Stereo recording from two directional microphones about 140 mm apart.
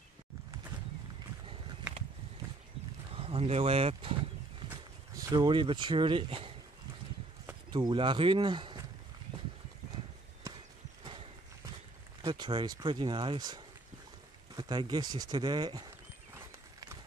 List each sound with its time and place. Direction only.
3.1 s speech: 45° right (ahead or behind)
5.1 s speech: 25° right (ahead or behind)
7.7 s speech: 35° right (ahead or behind)
12.2 s speech: 30° right (ahead or behind)